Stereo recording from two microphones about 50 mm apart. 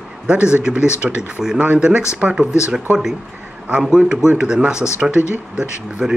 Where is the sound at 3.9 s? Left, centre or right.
Centre.